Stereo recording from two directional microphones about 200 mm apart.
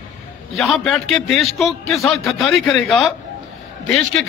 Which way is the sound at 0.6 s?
Centre (ahead or behind).